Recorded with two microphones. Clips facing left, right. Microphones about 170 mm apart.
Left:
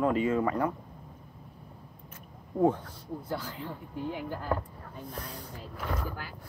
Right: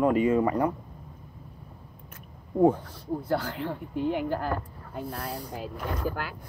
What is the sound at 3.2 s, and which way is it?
Speech, 75° right (ahead or behind).